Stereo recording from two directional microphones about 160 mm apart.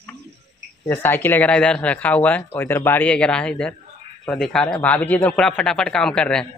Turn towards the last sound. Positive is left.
turn(degrees=5)  # may be behind; listen again after turning